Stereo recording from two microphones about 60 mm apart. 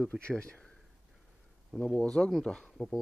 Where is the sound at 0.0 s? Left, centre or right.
Centre.